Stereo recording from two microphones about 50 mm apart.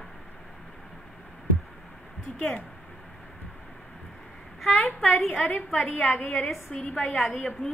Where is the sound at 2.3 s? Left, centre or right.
Left.